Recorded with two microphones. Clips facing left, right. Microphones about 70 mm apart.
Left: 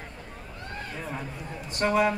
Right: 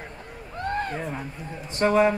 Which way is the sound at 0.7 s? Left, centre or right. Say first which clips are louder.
Right 11 dB; right.